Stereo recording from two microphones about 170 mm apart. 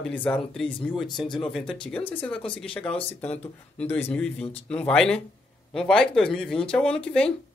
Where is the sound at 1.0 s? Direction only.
25° left (ahead or behind).